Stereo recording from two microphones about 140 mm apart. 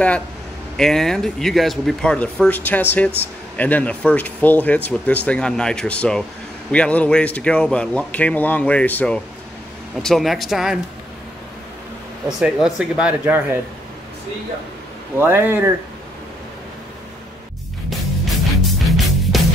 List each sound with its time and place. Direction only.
0.7 s speech: 5° left (ahead or behind)
12.4 s speech: 5° right (ahead or behind)
15.1 s speech: 15° right (ahead or behind)
17.8 s music: centre (ahead or behind)